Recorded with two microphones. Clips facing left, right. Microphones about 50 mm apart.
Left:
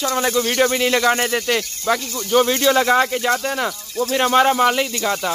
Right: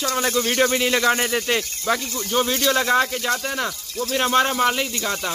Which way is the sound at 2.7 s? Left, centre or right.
Centre.